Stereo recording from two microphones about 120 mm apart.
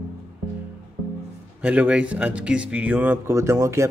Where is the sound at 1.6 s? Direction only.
10° right (ahead or behind).